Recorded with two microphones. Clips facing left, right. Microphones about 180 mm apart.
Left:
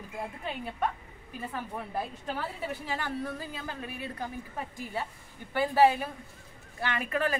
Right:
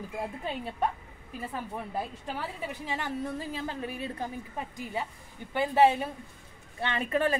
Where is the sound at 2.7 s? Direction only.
20° right (ahead or behind).